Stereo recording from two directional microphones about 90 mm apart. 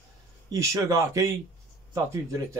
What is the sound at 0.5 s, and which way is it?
Speech, 35° right (ahead or behind).